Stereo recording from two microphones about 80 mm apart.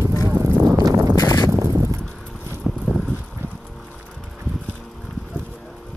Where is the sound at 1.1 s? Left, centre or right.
Left.